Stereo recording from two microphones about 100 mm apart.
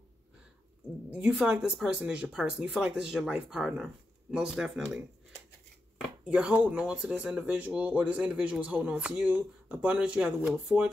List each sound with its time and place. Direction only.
1.1 s speech: 10° right (ahead or behind)
6.2 s speech: 10° right (ahead or behind)